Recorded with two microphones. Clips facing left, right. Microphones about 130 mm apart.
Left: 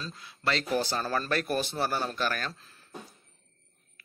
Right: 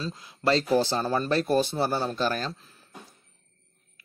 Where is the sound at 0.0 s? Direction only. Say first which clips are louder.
Right 6 dB; 20° right (ahead or behind).